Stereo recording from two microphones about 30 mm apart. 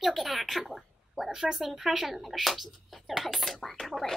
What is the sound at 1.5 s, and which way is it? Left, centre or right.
Speech, centre.